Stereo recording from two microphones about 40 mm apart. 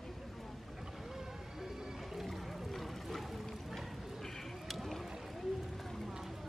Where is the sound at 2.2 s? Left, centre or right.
Centre.